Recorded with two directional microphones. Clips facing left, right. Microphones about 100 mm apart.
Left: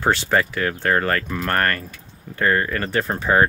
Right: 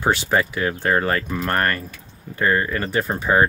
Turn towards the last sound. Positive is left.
turn(degrees=-10)  # may be behind; listen again after turning